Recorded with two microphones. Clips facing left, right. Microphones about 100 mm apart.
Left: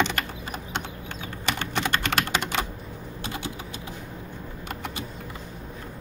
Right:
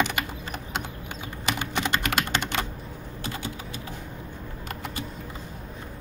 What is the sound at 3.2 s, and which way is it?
Typing, 20° left (ahead or behind).